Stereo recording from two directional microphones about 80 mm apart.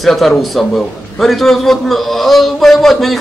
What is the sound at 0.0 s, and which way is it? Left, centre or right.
A man's voice, centre.